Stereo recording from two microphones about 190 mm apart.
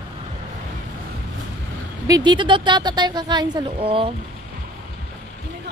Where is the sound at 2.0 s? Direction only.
20° right (ahead or behind).